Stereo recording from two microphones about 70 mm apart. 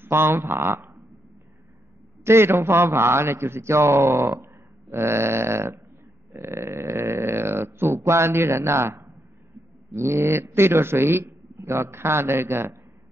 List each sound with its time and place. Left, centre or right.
0.0 s speech: right
2.2 s a man's voice: right